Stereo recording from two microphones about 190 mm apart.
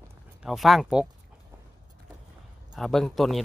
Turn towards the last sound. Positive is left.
turn(degrees=0)  # may be behind; listen again after turning